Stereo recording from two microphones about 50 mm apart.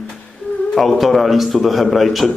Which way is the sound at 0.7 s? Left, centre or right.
Centre.